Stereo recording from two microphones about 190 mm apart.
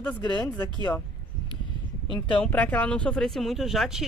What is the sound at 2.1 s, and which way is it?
Speech, 25° left (ahead or behind).